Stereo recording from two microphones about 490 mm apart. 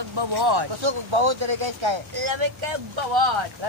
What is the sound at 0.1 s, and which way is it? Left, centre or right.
Speech, right.